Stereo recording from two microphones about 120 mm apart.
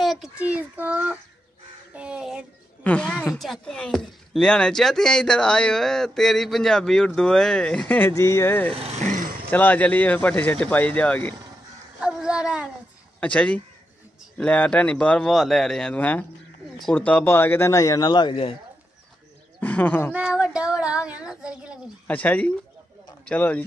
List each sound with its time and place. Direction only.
0.0 s child singing: centre (ahead or behind)
0.4 s a child's voice: 10° right (ahead or behind)
2.0 s child singing: 10° right (ahead or behind)
2.8 s a woman's voice: 10° left (ahead or behind)
3.3 s speech: centre (ahead or behind)
8.1 s speech: 25° left (ahead or behind)
8.7 s speech: 65° right (ahead or behind); by 9.2 s 80° right
9.5 s speech: 15° left (ahead or behind)
12.0 s a sound: 5° right (ahead or behind)
13.2 s speech: 10° left (ahead or behind); by 18.6 s 50° left (ahead or behind)
19.6 s speech: 15° left (ahead or behind)
20.1 s speech: 10° right (ahead or behind)
22.0 s speech: 15° left (ahead or behind)